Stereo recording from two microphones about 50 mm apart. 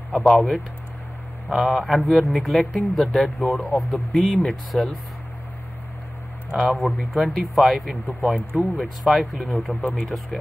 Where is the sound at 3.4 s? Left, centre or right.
Left.